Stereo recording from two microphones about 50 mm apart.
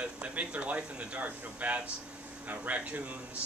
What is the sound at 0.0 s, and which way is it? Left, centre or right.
Speech, right.